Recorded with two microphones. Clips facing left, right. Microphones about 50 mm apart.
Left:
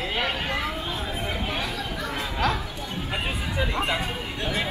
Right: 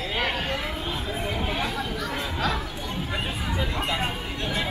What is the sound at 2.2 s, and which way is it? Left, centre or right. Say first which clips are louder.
Chatter: left 3 dB; left.